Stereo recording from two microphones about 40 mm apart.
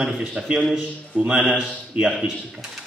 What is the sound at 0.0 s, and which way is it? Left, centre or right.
Speech, right.